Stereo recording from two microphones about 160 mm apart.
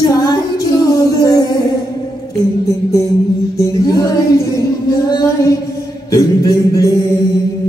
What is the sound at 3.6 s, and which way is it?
Mantra, 20° left (ahead or behind).